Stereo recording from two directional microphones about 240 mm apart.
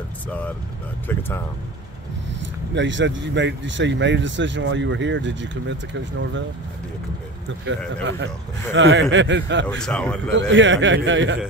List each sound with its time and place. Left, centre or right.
2.7 s speech: right
7.6 s speech: right
9.7 s speech: centre
10.5 s speech: right